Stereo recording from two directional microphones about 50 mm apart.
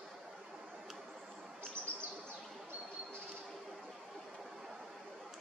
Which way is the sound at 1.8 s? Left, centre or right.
Right.